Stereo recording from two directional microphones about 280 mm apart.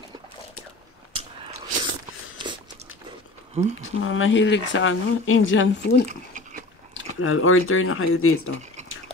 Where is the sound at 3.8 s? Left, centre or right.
Left.